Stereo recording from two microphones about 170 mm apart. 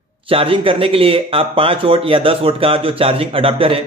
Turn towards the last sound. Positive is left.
turn(degrees=-35)  # may be behind; listen again after turning